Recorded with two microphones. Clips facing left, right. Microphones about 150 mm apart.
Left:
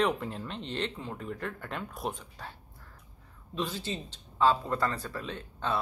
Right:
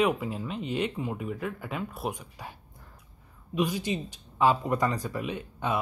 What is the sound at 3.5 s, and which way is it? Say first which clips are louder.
Speech: right 6 dB; 15° right (ahead or behind).